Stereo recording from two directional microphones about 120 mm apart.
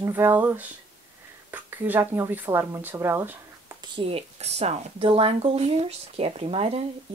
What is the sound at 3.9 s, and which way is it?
Speech, 55° right (ahead or behind).